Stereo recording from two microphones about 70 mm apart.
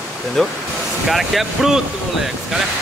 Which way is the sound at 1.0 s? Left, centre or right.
Centre.